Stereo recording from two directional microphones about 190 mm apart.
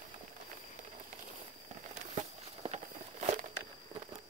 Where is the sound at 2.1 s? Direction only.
35° right (ahead or behind).